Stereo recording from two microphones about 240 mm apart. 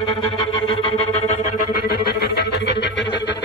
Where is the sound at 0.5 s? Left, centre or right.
Left.